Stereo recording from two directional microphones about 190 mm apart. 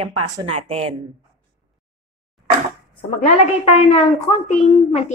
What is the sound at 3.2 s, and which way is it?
A woman's voice, 35° left (ahead or behind).